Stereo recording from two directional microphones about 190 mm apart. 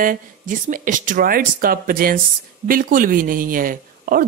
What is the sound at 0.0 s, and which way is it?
Speech, 45° right (ahead or behind).